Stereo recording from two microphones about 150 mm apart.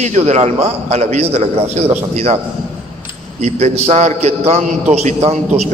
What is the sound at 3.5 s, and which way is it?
A man's voice, 45° right (ahead or behind).